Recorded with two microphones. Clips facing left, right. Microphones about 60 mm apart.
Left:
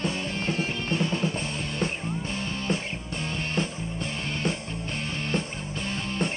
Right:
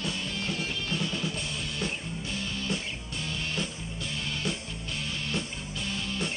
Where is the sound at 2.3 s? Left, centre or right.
Left.